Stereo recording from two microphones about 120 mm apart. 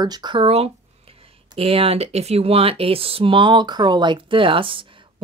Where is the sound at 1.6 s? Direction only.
55° right (ahead or behind).